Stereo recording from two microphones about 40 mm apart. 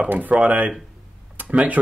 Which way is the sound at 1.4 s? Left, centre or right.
Right.